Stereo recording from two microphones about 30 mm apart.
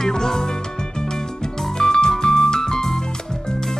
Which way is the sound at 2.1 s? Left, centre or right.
Left.